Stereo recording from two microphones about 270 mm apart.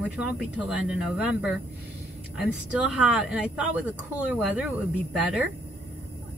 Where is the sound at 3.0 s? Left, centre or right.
Centre.